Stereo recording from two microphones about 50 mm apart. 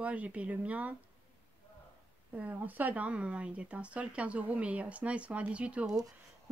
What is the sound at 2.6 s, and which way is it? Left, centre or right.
Speech, right.